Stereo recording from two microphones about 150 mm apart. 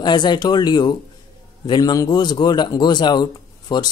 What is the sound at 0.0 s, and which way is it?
A man's voice, 30° left (ahead or behind).